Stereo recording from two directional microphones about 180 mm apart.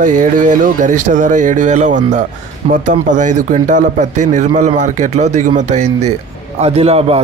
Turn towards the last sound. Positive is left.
turn(degrees=-35)  # may be behind; listen again after turning